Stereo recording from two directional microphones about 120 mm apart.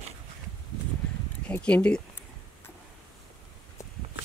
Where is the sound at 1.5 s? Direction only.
10° left (ahead or behind).